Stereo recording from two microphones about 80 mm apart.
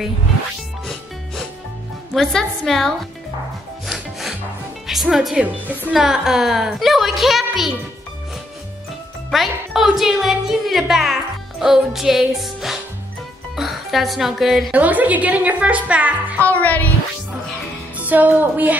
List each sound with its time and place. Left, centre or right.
2.1 s a woman's voice: centre
3.8 s rub: centre
5.0 s a woman's voice: centre
9.3 s a woman's voice: centre
14.7 s speech: centre
16.3 s music: left
17.9 s music: right